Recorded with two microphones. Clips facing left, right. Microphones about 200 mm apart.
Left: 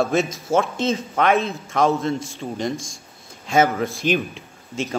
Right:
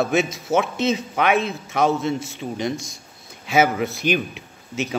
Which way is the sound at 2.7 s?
50° left (ahead or behind).